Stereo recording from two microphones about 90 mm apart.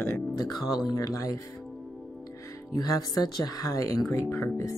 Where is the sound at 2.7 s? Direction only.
45° left (ahead or behind).